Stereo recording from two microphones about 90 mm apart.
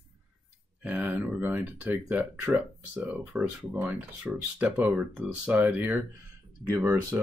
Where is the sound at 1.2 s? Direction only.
15° right (ahead or behind).